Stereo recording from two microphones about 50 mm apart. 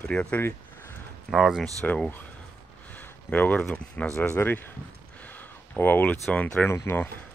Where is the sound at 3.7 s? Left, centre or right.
Left.